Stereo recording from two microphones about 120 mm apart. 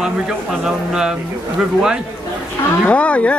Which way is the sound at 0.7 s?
5° right (ahead or behind).